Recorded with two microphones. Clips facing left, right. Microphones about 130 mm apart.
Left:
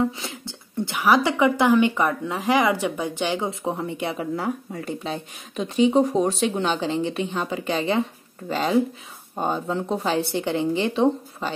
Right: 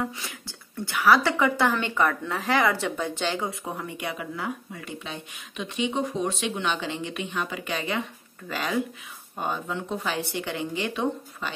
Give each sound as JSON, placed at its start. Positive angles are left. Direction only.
{"t": 0.0, "sound": "a woman's voice", "side_deg": 25}
{"t": 3.4, "sound": "speech", "side_deg": 25}